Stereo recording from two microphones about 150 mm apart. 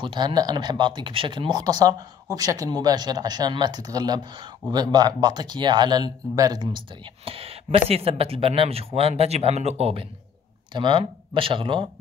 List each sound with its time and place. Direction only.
0.0 s speech: 30° right (ahead or behind)
7.2 s speech: 40° right (ahead or behind)
10.7 s speech: 35° right (ahead or behind)